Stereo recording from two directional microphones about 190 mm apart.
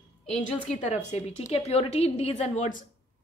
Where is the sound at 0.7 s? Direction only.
40° left (ahead or behind).